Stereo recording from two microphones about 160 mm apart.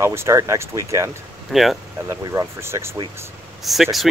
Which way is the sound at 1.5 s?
Centre (ahead or behind).